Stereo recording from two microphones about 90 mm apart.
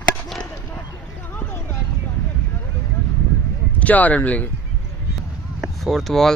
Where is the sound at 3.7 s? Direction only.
15° left (ahead or behind).